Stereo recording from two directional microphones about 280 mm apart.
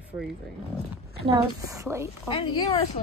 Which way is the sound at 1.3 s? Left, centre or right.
Centre.